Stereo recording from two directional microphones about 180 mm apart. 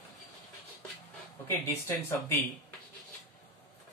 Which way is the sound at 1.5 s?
15° left (ahead or behind).